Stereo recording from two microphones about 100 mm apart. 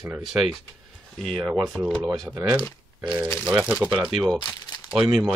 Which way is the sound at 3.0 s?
15° right (ahead or behind).